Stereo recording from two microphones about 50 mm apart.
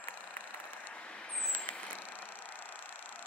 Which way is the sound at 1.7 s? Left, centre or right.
Left.